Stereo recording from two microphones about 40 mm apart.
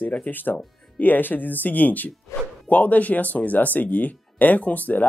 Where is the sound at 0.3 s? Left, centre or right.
Left.